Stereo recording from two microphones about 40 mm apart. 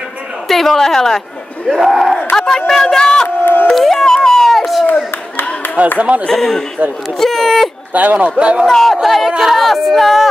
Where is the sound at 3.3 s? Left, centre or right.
Left.